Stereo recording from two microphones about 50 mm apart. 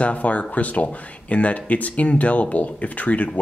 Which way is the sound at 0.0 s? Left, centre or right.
Left.